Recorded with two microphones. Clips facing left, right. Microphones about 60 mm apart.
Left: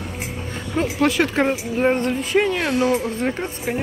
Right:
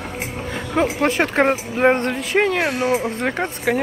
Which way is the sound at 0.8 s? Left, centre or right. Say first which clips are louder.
Even; right.